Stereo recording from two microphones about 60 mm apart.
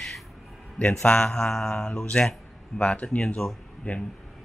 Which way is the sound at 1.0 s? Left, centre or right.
Centre.